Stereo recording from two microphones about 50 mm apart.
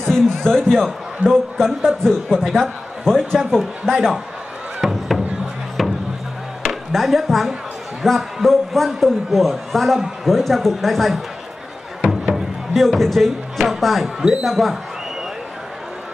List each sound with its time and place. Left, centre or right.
0.0 s a man's voice: centre
1.2 s a man's voice: right
1.8 s a man's voice: centre
4.8 s music: centre
5.8 s a sound: centre
6.6 s a man's voice: centre
12.0 s music: centre
12.7 s speech: centre